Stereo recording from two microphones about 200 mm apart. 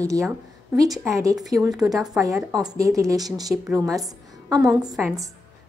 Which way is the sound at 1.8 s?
20° right (ahead or behind).